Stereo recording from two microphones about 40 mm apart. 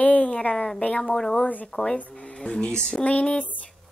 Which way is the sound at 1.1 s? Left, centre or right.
Centre.